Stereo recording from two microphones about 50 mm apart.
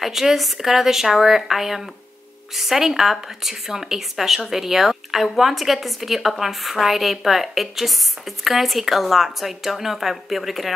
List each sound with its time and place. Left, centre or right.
0.0 s a woman's voice: centre